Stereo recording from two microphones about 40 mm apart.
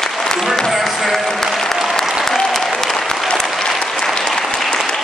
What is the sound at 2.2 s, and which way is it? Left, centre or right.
Applause, centre.